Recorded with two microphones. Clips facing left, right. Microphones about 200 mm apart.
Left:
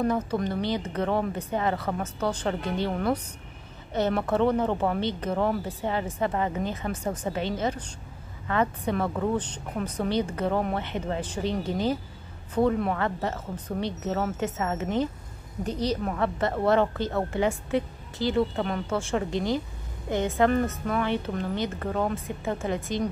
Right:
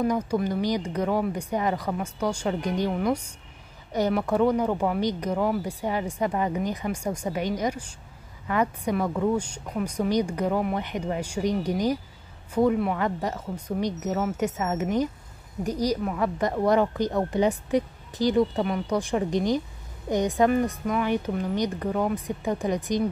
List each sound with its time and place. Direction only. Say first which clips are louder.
0.0 s speech: right 1 dB; 10° right (ahead or behind)